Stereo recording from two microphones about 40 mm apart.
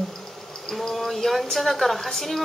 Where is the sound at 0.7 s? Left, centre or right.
Centre.